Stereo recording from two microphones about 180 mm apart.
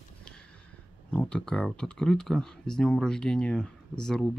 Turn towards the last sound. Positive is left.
turn(degrees=5)  # may be behind; listen again after turning